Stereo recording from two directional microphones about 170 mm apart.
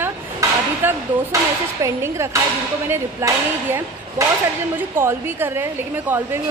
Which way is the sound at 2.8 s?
15° right (ahead or behind).